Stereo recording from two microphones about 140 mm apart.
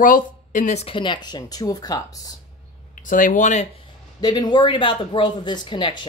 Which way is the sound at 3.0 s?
70° left (ahead or behind).